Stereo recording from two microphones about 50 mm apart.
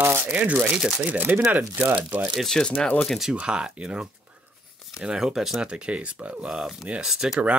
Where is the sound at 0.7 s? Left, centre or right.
Centre.